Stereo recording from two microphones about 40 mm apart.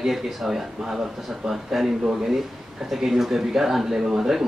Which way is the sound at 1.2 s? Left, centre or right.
Centre.